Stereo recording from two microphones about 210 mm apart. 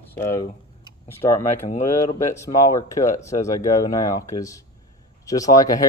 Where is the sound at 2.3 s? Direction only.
15° left (ahead or behind).